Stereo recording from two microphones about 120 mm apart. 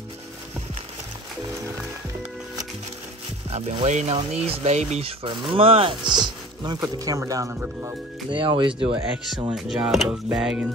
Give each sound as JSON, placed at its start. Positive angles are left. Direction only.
{"t": 3.4, "sound": "music", "side_deg": -60}
{"t": 3.8, "sound": "speech", "side_deg": -70}
{"t": 5.2, "sound": "speech", "side_deg": -45}
{"t": 8.3, "sound": "speech", "side_deg": -40}
{"t": 9.7, "sound": "speech", "side_deg": 0}
{"t": 10.3, "sound": "music", "side_deg": -5}